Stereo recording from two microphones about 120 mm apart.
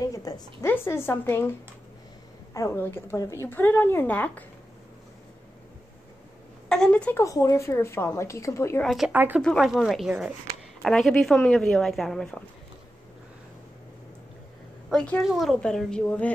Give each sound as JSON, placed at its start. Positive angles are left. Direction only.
{"t": 0.0, "sound": "a sound", "side_deg": 30}
{"t": 0.7, "sound": "a woman's voice", "side_deg": 20}
{"t": 6.7, "sound": "speech", "side_deg": 5}
{"t": 7.2, "sound": "a woman's voice", "side_deg": 25}
{"t": 8.8, "sound": "speech", "side_deg": 0}
{"t": 9.1, "sound": "speech", "side_deg": -15}
{"t": 9.4, "sound": "speech", "side_deg": 0}
{"t": 14.9, "sound": "speech", "side_deg": 5}